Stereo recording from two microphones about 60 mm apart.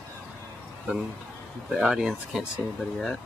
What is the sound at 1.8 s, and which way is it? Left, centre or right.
Speech, centre.